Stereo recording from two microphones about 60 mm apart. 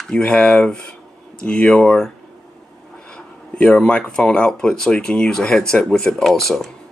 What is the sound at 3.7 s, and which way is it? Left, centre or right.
Speech, centre.